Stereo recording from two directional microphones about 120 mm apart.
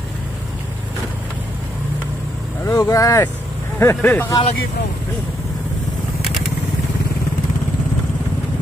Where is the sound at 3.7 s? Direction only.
15° left (ahead or behind).